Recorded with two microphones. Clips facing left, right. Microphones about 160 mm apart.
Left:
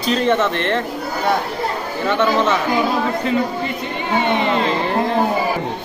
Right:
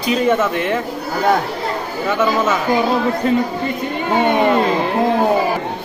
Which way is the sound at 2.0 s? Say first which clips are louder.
Even; 5° right (ahead or behind).